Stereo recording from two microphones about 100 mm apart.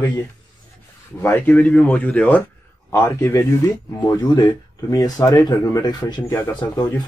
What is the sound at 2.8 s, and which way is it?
Speech, 25° left (ahead or behind).